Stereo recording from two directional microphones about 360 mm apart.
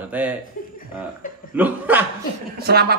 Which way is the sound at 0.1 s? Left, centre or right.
Centre.